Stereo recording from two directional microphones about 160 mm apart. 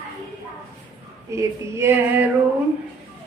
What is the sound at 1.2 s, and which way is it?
Female singing, 20° right (ahead or behind).